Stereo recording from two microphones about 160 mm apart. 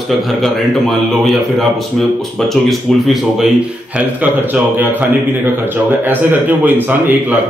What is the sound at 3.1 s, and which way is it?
Speech, centre (ahead or behind).